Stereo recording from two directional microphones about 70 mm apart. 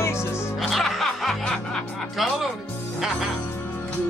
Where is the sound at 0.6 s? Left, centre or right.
Centre.